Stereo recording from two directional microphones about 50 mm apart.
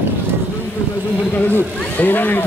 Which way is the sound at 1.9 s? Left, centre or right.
Left.